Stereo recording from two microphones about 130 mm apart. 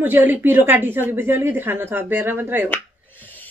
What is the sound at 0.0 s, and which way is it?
Speech, 15° right (ahead or behind).